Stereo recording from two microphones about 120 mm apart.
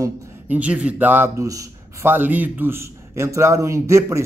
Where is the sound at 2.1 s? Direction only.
15° right (ahead or behind).